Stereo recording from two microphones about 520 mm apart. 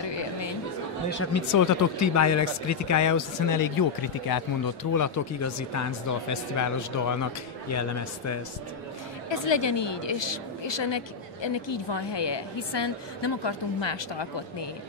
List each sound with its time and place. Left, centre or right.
0.0 s chatter: left
1.2 s speech: left
4.9 s speech: left
9.3 s a woman's voice: left